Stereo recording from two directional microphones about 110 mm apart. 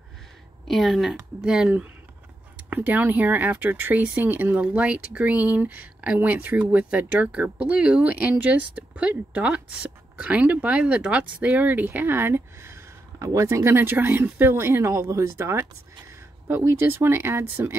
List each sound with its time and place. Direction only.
0.7 s a woman's voice: centre (ahead or behind); by 17.7 s 20° right (ahead or behind)